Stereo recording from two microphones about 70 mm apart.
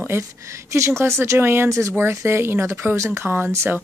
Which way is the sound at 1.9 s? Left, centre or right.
Right.